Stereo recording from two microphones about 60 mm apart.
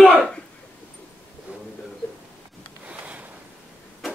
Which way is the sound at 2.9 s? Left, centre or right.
Right.